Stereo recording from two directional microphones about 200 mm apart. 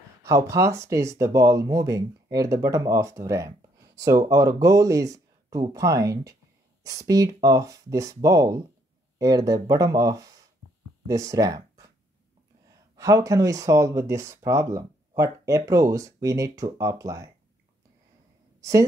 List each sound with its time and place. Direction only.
0.2 s speech: 15° right (ahead or behind)
12.9 s speech: 15° right (ahead or behind)
18.6 s a woman's voice: 15° right (ahead or behind)